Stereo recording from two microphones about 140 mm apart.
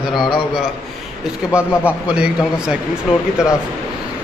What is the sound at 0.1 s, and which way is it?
A man's voice, centre (ahead or behind).